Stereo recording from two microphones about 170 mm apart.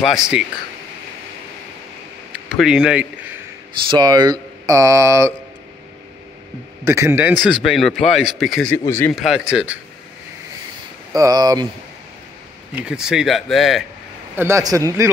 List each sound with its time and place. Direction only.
0.0 s speech: centre (ahead or behind)
2.5 s speech: 5° right (ahead or behind)
3.9 s speech: 25° right (ahead or behind)
6.8 s a man's voice: 15° right (ahead or behind)
7.4 s speech: centre (ahead or behind)
8.7 s speech: 15° left (ahead or behind)
9.1 s speech: centre (ahead or behind)
11.1 s speech: 20° right (ahead or behind)
12.7 s speech: 5° right (ahead or behind)
14.3 s a man's voice: 15° right (ahead or behind)